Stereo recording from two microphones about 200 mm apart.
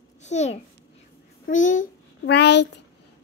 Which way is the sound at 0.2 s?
35° left (ahead or behind).